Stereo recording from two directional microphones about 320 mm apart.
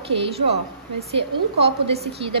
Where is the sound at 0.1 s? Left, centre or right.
Centre.